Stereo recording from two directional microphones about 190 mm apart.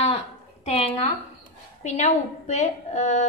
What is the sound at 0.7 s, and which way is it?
A woman's voice, 30° left (ahead or behind).